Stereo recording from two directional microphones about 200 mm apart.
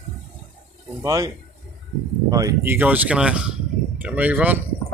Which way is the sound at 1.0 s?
15° right (ahead or behind).